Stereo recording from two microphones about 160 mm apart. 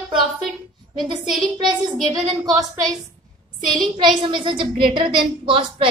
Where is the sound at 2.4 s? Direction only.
20° right (ahead or behind).